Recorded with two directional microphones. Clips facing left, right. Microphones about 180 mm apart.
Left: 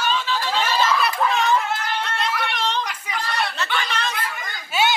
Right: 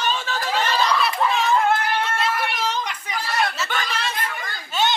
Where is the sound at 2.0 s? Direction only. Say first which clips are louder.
Right 2 dB; 5° right (ahead or behind).